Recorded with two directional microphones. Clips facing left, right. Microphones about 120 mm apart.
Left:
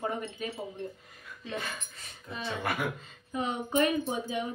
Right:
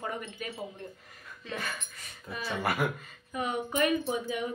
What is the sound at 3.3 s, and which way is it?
Speech, 30° left (ahead or behind).